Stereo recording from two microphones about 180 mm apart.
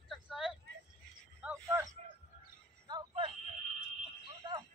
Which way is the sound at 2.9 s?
25° right (ahead or behind).